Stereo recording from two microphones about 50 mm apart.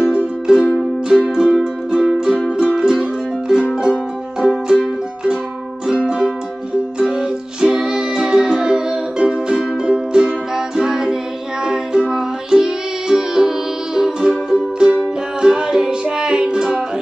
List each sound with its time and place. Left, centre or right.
0.1 s music: centre
5.9 s music: centre